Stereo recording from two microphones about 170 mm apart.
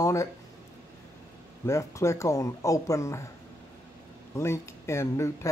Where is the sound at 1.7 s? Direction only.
15° left (ahead or behind).